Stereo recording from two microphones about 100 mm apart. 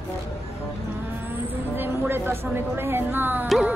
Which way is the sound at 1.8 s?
20° right (ahead or behind).